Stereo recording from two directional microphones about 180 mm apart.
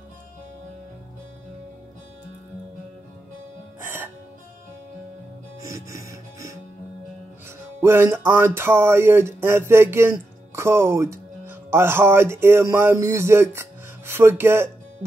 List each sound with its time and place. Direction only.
3.8 s music: 10° right (ahead or behind)
5.6 s music: 15° right (ahead or behind)
7.8 s music: 15° right (ahead or behind)
8.5 s speech: 15° right (ahead or behind)